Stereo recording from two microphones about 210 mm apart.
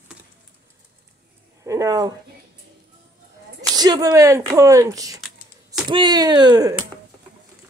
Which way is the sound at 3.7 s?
20° right (ahead or behind).